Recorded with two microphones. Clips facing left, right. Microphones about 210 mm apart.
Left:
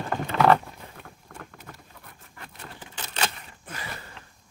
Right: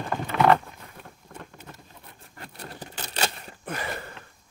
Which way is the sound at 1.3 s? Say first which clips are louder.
Right 1 dB; 25° right (ahead or behind).